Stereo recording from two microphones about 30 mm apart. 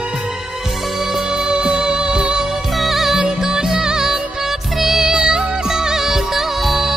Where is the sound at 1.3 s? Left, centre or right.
Right.